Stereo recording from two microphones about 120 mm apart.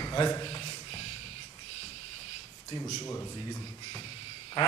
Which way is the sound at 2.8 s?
20° left (ahead or behind).